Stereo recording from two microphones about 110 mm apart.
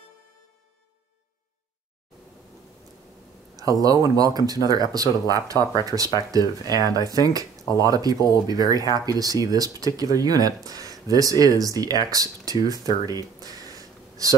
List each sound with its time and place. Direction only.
3.8 s speech: 35° right (ahead or behind)